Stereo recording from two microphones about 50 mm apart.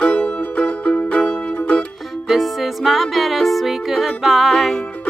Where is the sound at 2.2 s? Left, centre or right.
Centre.